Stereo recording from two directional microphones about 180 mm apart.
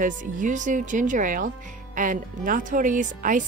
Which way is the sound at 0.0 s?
45° right (ahead or behind).